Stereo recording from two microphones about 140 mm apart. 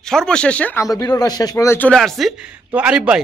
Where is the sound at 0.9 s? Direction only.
25° left (ahead or behind).